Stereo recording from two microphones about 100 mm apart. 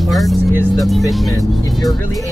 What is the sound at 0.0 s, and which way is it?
Speech, centre (ahead or behind).